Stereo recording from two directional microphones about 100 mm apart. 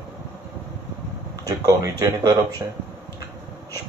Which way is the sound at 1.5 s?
35° right (ahead or behind).